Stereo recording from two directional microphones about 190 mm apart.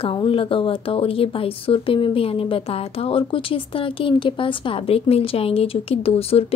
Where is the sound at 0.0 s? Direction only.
30° left (ahead or behind).